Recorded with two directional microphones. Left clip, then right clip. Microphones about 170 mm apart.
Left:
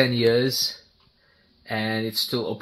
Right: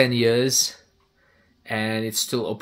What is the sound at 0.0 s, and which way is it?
Speech, 35° right (ahead or behind).